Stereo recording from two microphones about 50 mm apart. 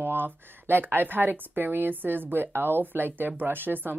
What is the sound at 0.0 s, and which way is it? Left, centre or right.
Speech, right.